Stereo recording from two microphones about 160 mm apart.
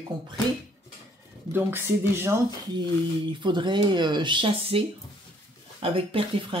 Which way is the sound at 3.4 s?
30° right (ahead or behind).